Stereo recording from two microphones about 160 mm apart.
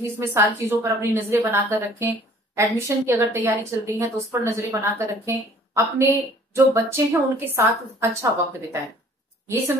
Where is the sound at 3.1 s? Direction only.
15° right (ahead or behind).